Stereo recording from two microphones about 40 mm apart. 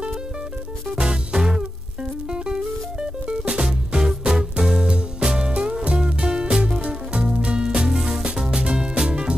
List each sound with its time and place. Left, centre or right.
0.9 s music: centre
7.9 s music: centre